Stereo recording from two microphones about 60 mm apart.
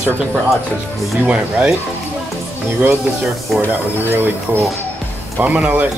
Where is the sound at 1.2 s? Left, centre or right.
Right.